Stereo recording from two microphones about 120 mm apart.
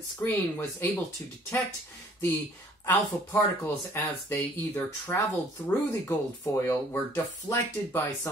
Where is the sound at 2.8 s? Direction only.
25° left (ahead or behind).